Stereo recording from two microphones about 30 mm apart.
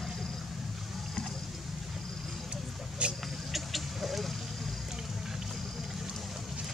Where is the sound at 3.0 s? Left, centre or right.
Right.